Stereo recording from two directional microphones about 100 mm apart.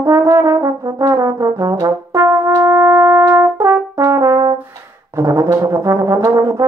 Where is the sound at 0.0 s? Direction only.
30° right (ahead or behind).